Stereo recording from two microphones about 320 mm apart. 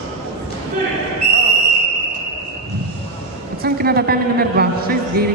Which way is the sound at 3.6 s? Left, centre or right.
Right.